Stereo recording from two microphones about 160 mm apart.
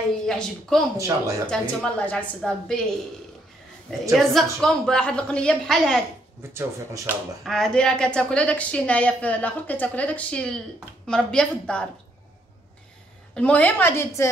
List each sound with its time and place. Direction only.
0.3 s a woman's voice: 5° left (ahead or behind)
0.9 s speech: 20° right (ahead or behind)
1.5 s a woman's voice: 5° left (ahead or behind)
4.1 s a woman's voice: centre (ahead or behind)
6.5 s speech: 15° right (ahead or behind)
7.4 s a woman's voice: centre (ahead or behind)
13.3 s a woman's voice: 10° left (ahead or behind)